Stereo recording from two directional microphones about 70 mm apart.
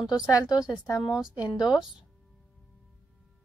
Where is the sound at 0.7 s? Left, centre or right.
Left.